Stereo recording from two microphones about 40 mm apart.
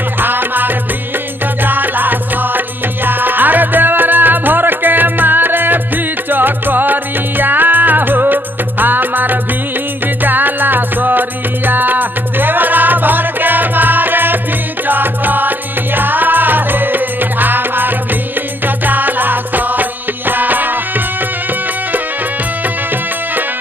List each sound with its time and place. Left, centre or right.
0.2 s music: right